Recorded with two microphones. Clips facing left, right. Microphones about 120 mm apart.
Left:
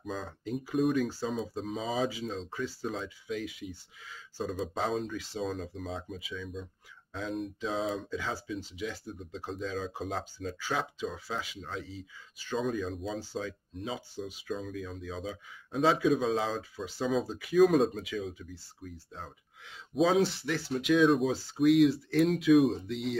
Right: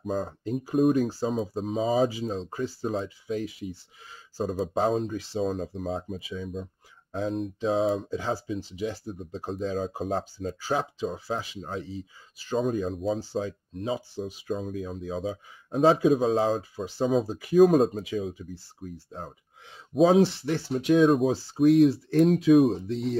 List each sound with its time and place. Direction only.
0.0 s speech: 45° right (ahead or behind)
21.0 s speech: 45° right (ahead or behind)